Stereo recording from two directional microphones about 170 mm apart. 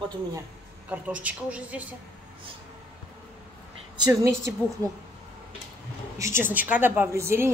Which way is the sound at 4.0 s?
15° right (ahead or behind).